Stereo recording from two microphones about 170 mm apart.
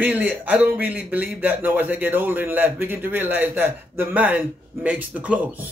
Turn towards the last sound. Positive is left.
turn(degrees=-10)  # may be behind; listen again after turning